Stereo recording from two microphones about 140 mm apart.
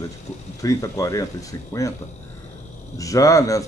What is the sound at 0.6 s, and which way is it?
Speech, 25° left (ahead or behind).